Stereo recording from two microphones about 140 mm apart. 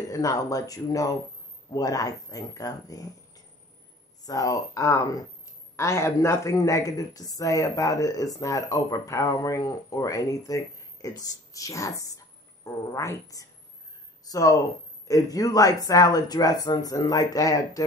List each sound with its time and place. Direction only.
0.1 s speech: 25° left (ahead or behind)